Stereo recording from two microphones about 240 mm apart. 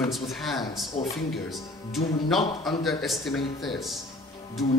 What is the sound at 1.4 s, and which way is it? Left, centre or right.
Speech, centre.